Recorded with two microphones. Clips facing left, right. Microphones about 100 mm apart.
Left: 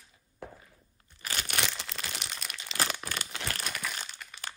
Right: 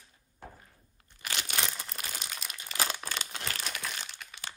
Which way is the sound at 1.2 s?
40° left (ahead or behind).